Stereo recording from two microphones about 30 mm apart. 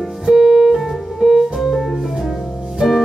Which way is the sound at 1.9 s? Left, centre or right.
Centre.